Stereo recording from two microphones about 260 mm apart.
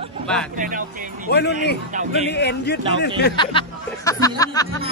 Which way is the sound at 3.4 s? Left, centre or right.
Centre.